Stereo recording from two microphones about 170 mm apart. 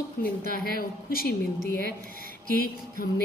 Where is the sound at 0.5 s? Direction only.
60° left (ahead or behind).